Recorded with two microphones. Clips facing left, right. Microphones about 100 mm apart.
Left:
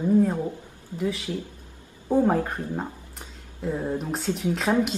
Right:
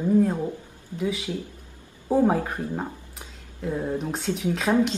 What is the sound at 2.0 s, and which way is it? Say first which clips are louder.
Speech: even; 5° right (ahead or behind).